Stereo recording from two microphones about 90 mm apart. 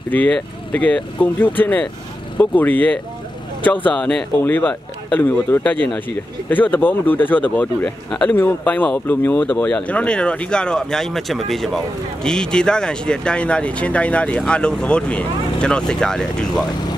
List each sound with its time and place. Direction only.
0.1 s speech: 15° left (ahead or behind)
4.4 s speech: 20° left (ahead or behind)